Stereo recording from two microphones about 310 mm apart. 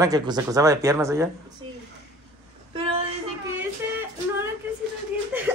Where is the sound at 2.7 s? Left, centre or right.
Centre.